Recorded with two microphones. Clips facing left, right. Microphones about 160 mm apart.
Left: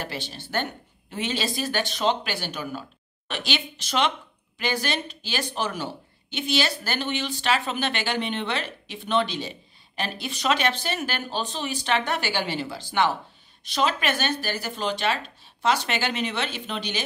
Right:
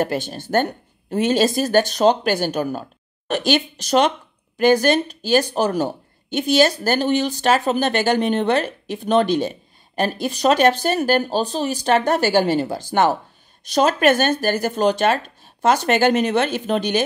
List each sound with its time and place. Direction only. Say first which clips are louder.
0.0 s speech: right 12 dB; 50° right (ahead or behind)